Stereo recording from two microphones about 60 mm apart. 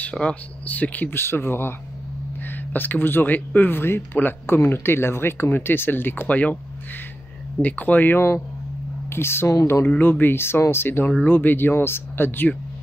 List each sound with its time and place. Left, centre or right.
0.0 s speech: centre
1.1 s speech: left
7.6 s speech: left
9.1 s speech: left
9.8 s speech: left